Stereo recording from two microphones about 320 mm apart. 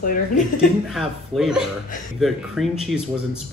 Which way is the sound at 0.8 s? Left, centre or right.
Centre.